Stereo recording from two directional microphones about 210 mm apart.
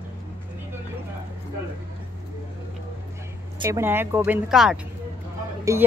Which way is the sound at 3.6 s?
10° right (ahead or behind).